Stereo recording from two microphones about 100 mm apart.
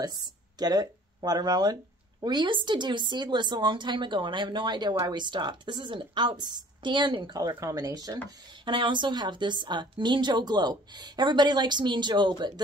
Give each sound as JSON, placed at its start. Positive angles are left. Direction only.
{"t": 0.0, "sound": "speech", "side_deg": -40}
{"t": 8.6, "sound": "speech", "side_deg": -55}